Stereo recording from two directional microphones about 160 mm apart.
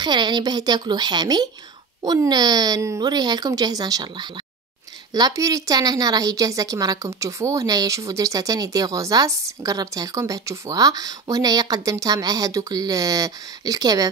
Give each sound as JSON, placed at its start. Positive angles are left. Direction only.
{"t": 0.0, "sound": "a woman's voice", "side_deg": -30}